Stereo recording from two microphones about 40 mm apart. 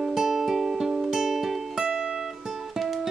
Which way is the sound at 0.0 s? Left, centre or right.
Centre.